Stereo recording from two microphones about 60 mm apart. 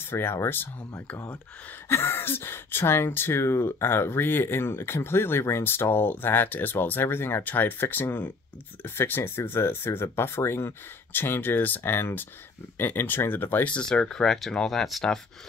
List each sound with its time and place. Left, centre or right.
0.0 s speech: left
1.9 s speech: left
13.7 s speech: centre